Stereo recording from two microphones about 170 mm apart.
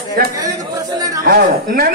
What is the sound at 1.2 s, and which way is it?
Speech, 60° right (ahead or behind).